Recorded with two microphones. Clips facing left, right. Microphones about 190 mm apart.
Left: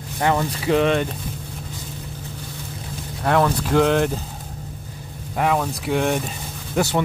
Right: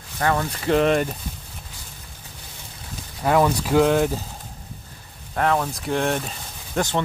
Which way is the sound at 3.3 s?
5° right (ahead or behind).